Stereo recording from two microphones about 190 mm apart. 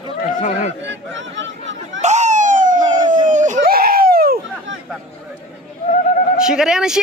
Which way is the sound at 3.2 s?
40° right (ahead or behind).